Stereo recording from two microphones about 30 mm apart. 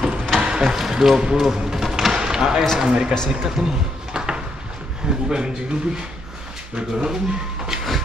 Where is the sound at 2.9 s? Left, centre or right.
Right.